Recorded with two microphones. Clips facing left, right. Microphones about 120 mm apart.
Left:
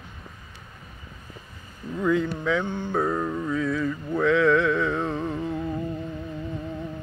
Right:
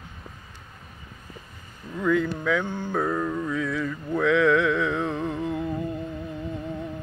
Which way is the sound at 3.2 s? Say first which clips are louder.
Left 1 dB; 15° left (ahead or behind).